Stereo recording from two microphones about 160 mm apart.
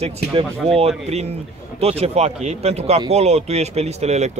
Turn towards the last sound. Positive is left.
turn(degrees=-45)  # may be behind; listen again after turning